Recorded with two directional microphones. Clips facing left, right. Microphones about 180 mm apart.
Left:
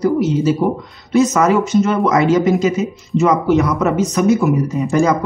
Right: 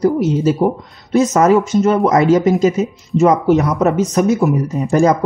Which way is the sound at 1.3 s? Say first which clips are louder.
Right 2 dB; 40° right (ahead or behind).